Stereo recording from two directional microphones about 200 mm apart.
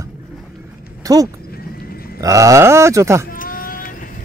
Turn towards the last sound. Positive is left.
turn(degrees=45)  # may be behind; listen again after turning